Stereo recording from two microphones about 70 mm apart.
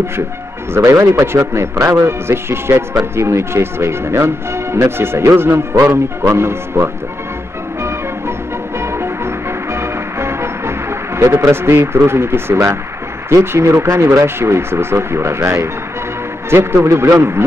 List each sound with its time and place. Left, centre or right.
0.7 s a man's voice: right
8.7 s music: right
13.3 s a man's voice: right